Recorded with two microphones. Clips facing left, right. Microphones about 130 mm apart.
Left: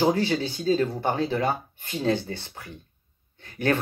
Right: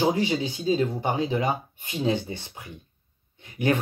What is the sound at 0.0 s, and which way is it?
Speech, 15° right (ahead or behind).